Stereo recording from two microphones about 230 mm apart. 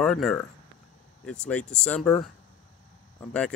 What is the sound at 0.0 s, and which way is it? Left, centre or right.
Speech, centre.